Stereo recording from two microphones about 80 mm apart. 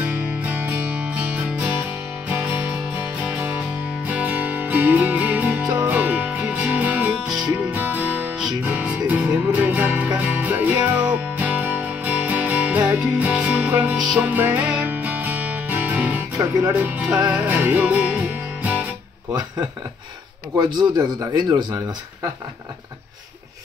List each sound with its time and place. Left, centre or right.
0.0 s music: centre
7.2 s music: centre
7.7 s music: right
20.5 s speech: right